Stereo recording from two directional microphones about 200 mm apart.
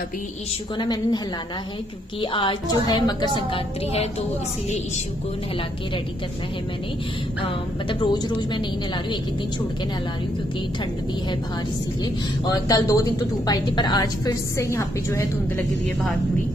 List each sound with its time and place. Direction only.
0.7 s a woman's voice: 20° left (ahead or behind)
2.3 s a woman's voice: 20° left (ahead or behind)
8.0 s a woman's voice: 25° left (ahead or behind)
12.0 s a woman's voice: 20° left (ahead or behind)